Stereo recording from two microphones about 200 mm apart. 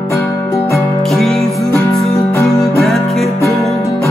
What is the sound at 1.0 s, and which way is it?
Music, centre (ahead or behind).